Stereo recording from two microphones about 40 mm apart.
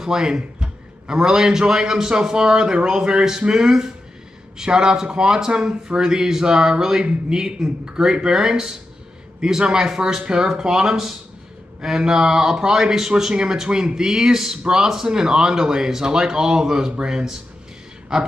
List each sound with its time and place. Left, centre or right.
0.0 s a man's voice: centre